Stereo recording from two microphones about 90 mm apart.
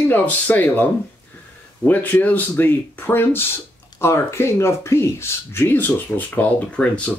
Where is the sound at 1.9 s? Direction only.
20° left (ahead or behind).